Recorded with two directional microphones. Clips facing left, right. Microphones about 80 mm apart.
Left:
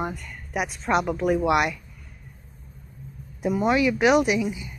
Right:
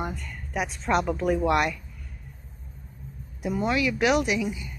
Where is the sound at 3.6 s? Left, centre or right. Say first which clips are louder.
Left 4 dB; left.